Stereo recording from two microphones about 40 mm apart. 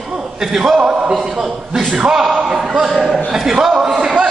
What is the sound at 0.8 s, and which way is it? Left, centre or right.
Speech, right.